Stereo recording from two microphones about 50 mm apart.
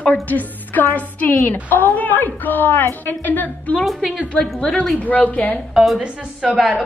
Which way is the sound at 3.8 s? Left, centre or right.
Centre.